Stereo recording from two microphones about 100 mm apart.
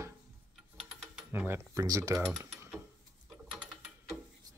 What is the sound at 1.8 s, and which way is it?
Speech, 35° right (ahead or behind).